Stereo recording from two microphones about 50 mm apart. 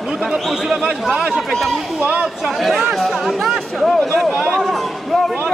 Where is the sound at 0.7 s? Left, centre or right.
Centre.